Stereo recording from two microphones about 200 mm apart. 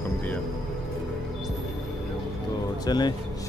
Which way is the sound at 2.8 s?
20° left (ahead or behind).